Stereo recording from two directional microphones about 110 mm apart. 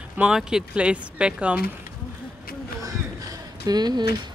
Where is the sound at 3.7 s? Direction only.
40° right (ahead or behind).